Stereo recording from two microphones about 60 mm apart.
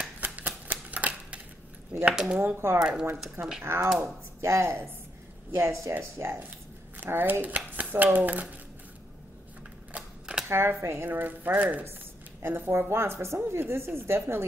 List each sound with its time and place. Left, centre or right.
0.0 s typewriter: right
2.1 s speech: centre
2.4 s speech: right
2.8 s speech: centre
3.6 s a woman's voice: right
7.0 s speech: right
9.9 s typewriter: centre
10.8 s a woman's voice: right
11.1 s speech: right
12.4 s a woman's voice: right